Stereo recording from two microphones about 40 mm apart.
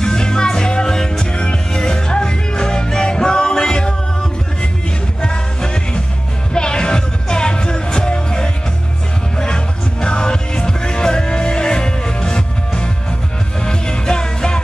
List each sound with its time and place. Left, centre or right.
0.0 s music: centre
5.2 s music: left